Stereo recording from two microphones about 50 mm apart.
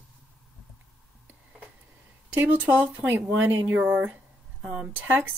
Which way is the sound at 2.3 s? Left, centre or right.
Right.